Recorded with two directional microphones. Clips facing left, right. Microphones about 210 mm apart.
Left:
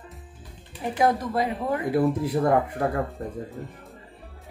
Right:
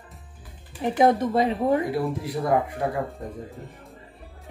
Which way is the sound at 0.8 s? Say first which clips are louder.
Right 4 dB; 25° right (ahead or behind).